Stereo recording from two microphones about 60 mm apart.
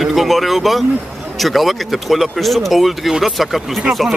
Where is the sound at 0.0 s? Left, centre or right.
Centre.